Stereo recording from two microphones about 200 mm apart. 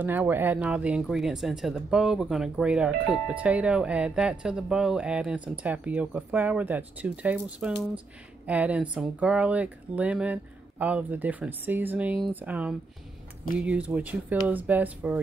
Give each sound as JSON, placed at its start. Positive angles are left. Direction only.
{"t": 0.0, "sound": "speech", "side_deg": -10}